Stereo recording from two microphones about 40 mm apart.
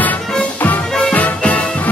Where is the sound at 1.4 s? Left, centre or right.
Left.